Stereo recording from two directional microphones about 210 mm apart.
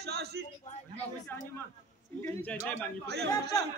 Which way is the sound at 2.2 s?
10° left (ahead or behind).